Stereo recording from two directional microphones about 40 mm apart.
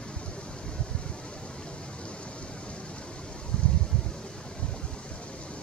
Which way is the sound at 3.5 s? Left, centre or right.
Left.